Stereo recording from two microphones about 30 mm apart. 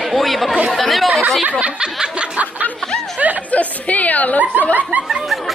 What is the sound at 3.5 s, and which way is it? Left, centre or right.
Speech, left.